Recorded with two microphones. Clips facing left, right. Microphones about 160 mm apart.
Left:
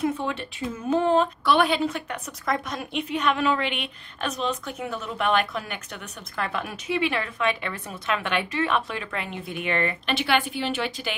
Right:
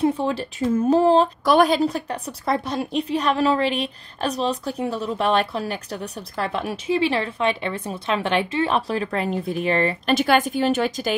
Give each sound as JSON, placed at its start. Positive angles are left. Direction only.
{"t": 0.0, "sound": "speech", "side_deg": -35}